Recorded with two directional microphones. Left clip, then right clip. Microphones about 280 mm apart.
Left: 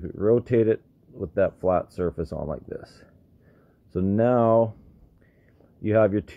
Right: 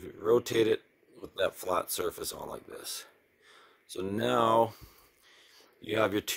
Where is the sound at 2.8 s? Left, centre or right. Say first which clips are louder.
Right 5 dB; right.